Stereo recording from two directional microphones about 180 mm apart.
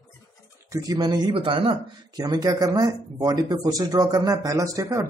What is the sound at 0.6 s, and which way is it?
Speech, 20° right (ahead or behind).